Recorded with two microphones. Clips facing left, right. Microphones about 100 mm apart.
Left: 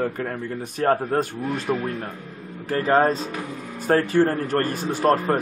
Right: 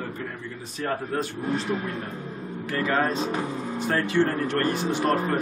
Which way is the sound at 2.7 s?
40° left (ahead or behind).